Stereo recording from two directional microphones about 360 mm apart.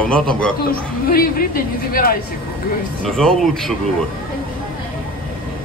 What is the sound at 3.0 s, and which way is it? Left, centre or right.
Speech, centre.